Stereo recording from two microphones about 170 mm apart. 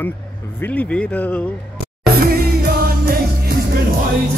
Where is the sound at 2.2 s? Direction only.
60° right (ahead or behind).